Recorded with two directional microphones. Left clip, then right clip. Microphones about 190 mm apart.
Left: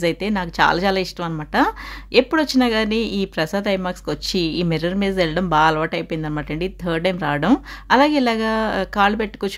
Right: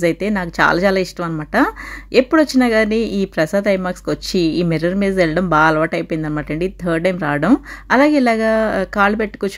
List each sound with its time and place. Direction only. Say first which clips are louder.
0.0 s speech: right 3 dB; 15° right (ahead or behind)